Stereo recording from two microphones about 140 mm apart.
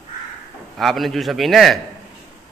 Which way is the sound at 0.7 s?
Centre (ahead or behind).